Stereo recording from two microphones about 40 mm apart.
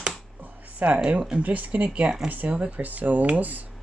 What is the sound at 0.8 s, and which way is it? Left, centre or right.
Speech, right.